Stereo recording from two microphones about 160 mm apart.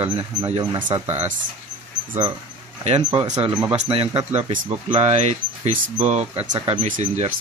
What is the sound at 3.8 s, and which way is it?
Speech, 35° right (ahead or behind).